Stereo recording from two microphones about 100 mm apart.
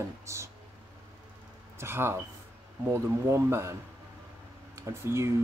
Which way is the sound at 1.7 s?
25° right (ahead or behind).